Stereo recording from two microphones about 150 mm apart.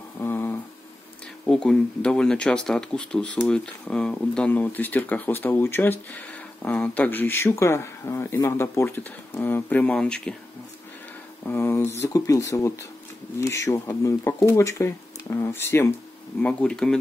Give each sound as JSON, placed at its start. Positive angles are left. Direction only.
{"t": 0.2, "sound": "a sound", "side_deg": 15}
{"t": 1.4, "sound": "speech", "side_deg": 5}
{"t": 11.4, "sound": "speech", "side_deg": 15}
{"t": 16.4, "sound": "speech", "side_deg": 5}